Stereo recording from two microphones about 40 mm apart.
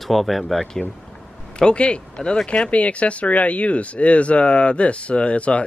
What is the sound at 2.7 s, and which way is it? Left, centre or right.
Speech, left.